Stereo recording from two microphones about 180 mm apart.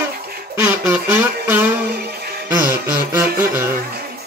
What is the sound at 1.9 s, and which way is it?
Music, 60° right (ahead or behind).